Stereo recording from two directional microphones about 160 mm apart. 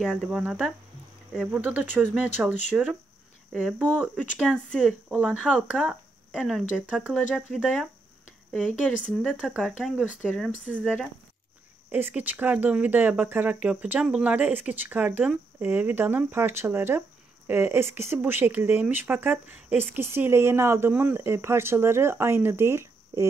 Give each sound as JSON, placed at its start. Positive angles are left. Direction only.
{"t": 0.0, "sound": "speech", "side_deg": 0}